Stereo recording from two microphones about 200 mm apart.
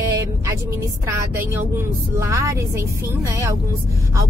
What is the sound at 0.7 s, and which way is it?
Speech, 10° right (ahead or behind).